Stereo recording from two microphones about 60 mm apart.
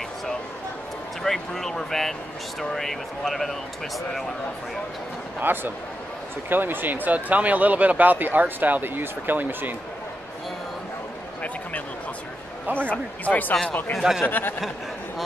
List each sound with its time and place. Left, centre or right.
1.2 s speech: centre
5.4 s speech: right
12.6 s speech: right
12.9 s speech: left
13.9 s speech: centre
14.2 s speech: left